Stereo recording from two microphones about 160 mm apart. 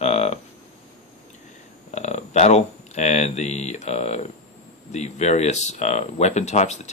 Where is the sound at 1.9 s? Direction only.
45° left (ahead or behind).